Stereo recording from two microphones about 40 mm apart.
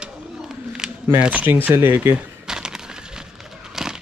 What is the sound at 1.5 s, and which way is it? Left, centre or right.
Speech, right.